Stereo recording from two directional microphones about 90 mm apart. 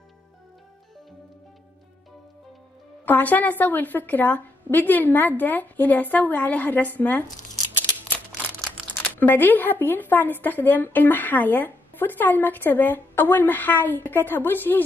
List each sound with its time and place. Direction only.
3.1 s speech: 20° left (ahead or behind)
8.5 s crumpling: centre (ahead or behind)
9.1 s speech: 20° left (ahead or behind)